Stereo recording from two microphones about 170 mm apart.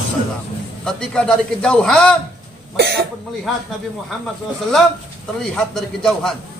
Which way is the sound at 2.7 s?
75° right (ahead or behind).